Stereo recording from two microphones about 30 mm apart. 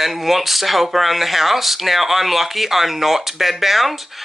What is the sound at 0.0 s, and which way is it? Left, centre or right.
Speech, centre.